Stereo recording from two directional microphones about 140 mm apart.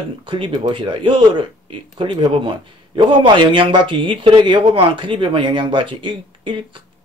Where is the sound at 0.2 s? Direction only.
35° right (ahead or behind).